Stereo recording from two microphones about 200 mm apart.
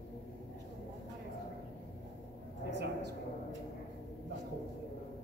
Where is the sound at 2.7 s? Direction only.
60° right (ahead or behind).